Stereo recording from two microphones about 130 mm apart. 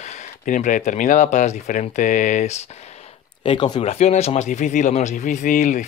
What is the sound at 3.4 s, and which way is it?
Speech, 40° left (ahead or behind).